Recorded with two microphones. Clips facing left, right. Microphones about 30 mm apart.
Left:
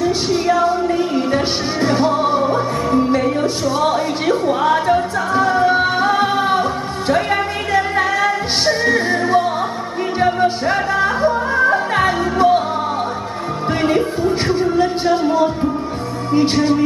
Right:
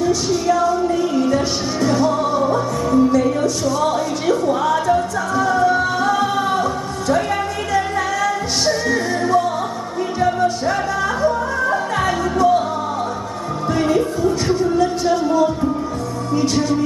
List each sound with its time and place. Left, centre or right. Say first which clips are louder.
0.0 s music: left 1 dB; left
13.8 s music: left 2 dB; left